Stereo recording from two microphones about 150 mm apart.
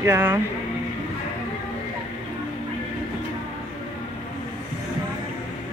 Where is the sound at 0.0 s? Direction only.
15° right (ahead or behind).